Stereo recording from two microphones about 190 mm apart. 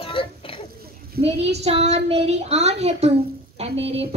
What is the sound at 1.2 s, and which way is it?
Child singing, 35° right (ahead or behind).